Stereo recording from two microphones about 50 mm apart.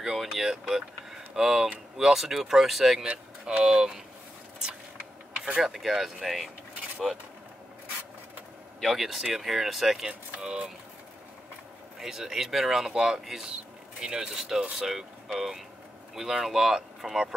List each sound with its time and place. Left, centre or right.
0.0 s a sound: centre
2.0 s speech: centre
3.0 s speech: centre
5.6 s speech: centre
8.8 s speech: centre
10.4 s speech: centre
12.0 s speech: centre